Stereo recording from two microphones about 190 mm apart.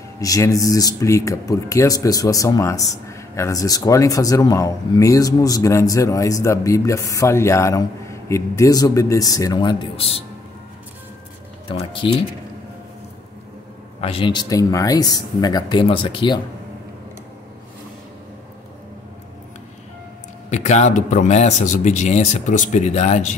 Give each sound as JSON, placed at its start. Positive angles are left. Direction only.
{"t": 0.2, "sound": "speech", "side_deg": 20}
{"t": 11.6, "sound": "speech", "side_deg": 25}
{"t": 14.0, "sound": "speech", "side_deg": 30}
{"t": 20.4, "sound": "speech", "side_deg": 35}